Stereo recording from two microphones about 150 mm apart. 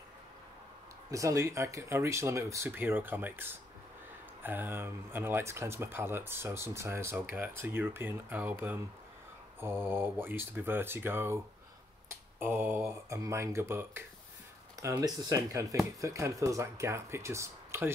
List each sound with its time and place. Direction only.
1.1 s speech: 20° right (ahead or behind)
12.4 s speech: 15° right (ahead or behind)